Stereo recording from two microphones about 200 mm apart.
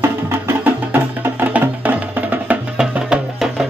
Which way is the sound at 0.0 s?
10° right (ahead or behind).